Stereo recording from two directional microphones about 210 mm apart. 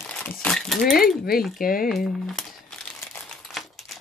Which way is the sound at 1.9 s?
Centre (ahead or behind).